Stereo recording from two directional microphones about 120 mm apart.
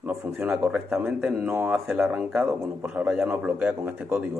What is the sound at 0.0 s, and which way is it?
A man's voice, 10° right (ahead or behind).